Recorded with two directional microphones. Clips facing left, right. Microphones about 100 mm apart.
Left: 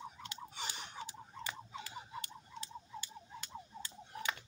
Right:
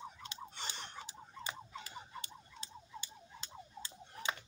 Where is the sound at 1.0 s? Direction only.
20° right (ahead or behind).